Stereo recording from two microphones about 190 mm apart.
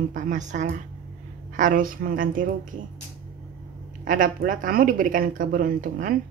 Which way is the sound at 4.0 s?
45° right (ahead or behind).